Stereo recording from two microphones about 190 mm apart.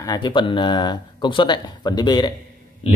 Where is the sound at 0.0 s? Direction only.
20° left (ahead or behind).